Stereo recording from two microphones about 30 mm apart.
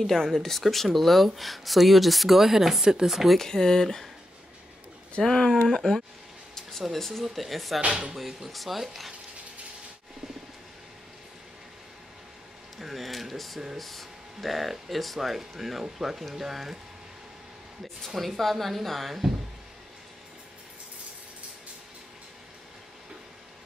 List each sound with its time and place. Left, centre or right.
0.0 s speech: centre
3.3 s speech: centre
5.2 s speech: centre
5.7 s speech: centre
12.7 s speech: centre
18.0 s speech: centre